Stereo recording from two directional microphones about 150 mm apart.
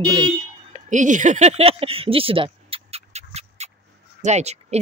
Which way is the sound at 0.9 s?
55° right (ahead or behind).